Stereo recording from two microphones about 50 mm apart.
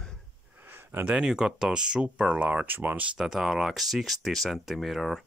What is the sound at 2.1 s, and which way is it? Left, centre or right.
Speech, right.